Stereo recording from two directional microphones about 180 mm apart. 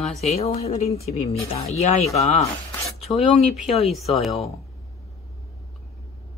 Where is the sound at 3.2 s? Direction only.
35° left (ahead or behind).